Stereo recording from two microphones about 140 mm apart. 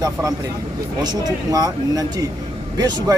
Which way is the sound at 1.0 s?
25° right (ahead or behind).